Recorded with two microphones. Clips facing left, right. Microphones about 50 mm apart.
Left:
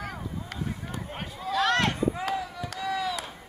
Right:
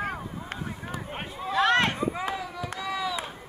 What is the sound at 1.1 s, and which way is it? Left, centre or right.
Run, right.